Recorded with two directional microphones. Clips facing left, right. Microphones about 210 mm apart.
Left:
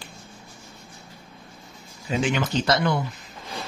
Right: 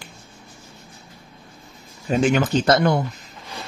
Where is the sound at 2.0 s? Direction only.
45° right (ahead or behind).